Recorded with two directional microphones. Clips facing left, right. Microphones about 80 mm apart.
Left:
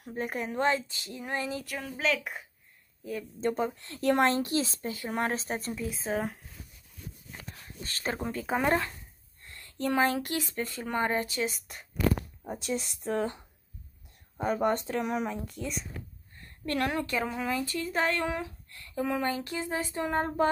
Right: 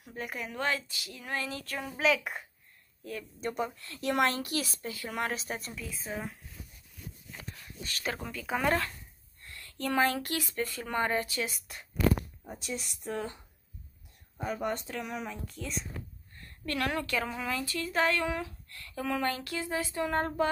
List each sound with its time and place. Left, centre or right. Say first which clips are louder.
0.1 s speech: left 5 dB; left; by 1.8 s centre
1.8 s a woman's voice: right 3 dB; centre
3.0 s speech: left 4 dB; centre
3.3 s speech: left 5 dB; left
5.7 s speech: left 7 dB; left
7.5 s speech: even; left
12.6 s speech: left 5 dB; left
14.4 s speech: left 6 dB; left
15.5 s speech: left 2 dB; centre
16.3 s a woman's voice: left 3 dB; left
18.3 s a sound: left 1 dB; left